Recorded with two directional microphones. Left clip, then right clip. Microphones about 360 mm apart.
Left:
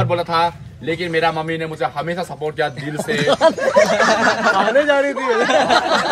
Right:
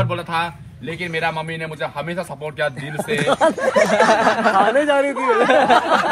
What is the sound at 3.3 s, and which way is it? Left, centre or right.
Speech, right.